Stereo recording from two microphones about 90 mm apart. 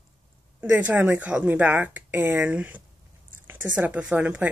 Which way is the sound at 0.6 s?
15° right (ahead or behind).